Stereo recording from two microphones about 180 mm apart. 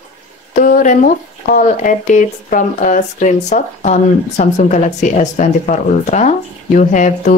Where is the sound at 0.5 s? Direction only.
50° left (ahead or behind).